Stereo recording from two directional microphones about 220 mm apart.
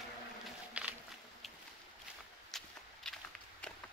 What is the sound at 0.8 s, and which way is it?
Walk, 5° right (ahead or behind).